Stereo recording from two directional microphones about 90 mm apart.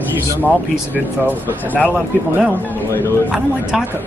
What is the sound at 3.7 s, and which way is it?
Speech, 5° right (ahead or behind).